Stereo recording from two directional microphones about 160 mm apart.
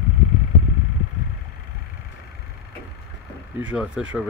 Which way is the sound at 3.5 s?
10° right (ahead or behind).